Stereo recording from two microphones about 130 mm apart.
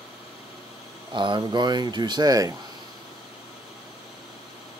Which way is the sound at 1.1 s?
35° right (ahead or behind).